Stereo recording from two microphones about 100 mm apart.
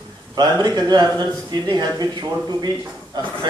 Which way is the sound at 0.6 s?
40° right (ahead or behind).